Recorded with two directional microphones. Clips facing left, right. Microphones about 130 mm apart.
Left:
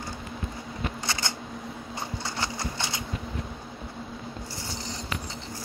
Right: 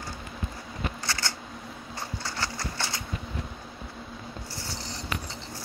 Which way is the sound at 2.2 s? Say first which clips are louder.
Left 1 dB; 20° left (ahead or behind).